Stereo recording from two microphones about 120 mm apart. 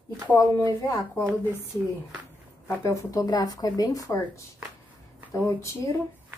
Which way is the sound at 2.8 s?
25° left (ahead or behind).